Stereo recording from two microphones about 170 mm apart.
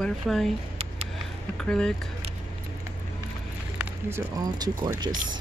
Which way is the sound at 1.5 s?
5° left (ahead or behind).